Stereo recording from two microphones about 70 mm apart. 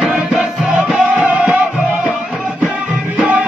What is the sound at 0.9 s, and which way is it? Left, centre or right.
Music, right.